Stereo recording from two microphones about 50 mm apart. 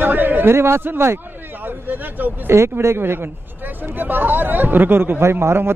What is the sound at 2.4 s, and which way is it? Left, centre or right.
Speech, right.